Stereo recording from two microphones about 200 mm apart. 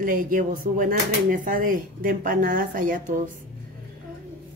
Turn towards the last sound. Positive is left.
turn(degrees=-45)  # may be behind; listen again after turning